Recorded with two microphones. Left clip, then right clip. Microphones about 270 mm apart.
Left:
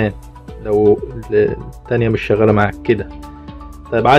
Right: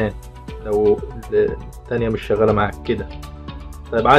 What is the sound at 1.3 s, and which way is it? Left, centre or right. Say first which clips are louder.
Speech: left 3 dB; left.